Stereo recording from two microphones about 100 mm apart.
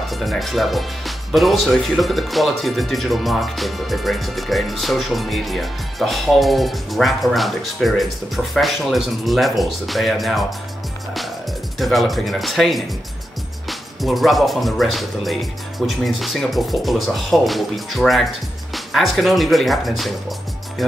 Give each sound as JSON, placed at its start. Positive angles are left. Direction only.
{"t": 0.1, "sound": "speech", "side_deg": 0}
{"t": 11.8, "sound": "speech", "side_deg": 0}